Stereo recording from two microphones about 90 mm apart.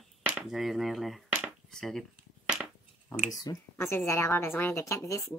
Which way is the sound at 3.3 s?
45° left (ahead or behind).